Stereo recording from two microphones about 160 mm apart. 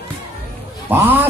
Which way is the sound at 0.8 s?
10° right (ahead or behind).